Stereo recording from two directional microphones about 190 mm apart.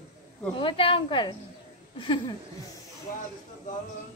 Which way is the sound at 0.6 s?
30° left (ahead or behind).